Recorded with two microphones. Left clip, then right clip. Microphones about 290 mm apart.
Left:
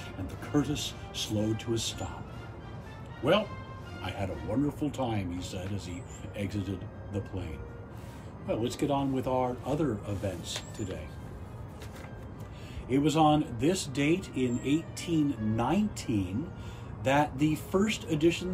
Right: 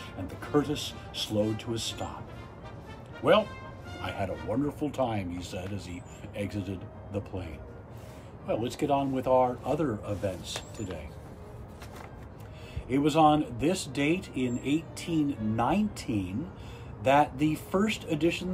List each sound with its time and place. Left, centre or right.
0.6 s speech: centre
4.0 s speech: centre
8.5 s speech: centre
12.8 s speech: centre